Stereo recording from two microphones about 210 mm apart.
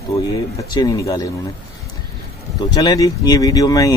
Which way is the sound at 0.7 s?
15° left (ahead or behind).